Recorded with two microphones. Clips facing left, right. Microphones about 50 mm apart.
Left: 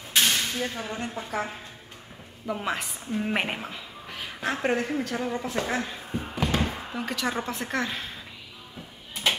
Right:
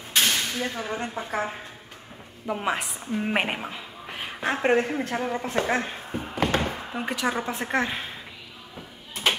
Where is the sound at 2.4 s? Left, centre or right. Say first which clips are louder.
Right 3 dB; centre.